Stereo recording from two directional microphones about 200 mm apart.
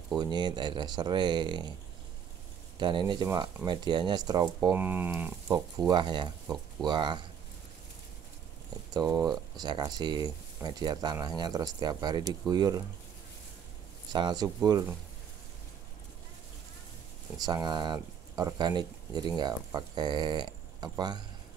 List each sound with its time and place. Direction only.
0.2 s speech: 20° right (ahead or behind)
2.8 s speech: 25° right (ahead or behind)
8.9 s speech: 20° right (ahead or behind)
14.1 s speech: 20° right (ahead or behind)
17.4 s speech: 20° right (ahead or behind)